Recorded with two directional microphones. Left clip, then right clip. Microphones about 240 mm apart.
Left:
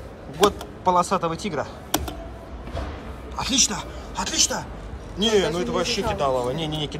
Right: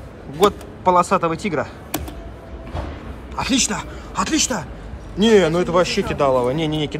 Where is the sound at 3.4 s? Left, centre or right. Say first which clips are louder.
Right 2 dB; centre.